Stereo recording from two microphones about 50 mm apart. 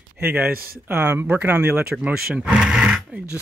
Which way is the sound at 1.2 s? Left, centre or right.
Right.